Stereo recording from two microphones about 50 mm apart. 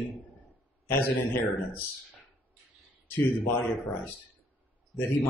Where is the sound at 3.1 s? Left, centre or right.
Left.